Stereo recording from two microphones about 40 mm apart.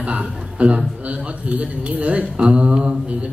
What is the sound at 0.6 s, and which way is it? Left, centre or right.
A man's voice, right.